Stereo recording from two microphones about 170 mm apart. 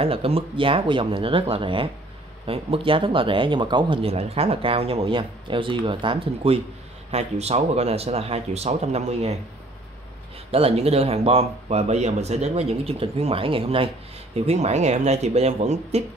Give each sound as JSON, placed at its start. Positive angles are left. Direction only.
{"t": 0.0, "sound": "speech", "side_deg": -35}
{"t": 10.5, "sound": "speech", "side_deg": -35}